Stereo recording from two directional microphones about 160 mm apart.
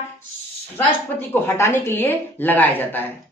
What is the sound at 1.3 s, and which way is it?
A woman's voice, 15° left (ahead or behind).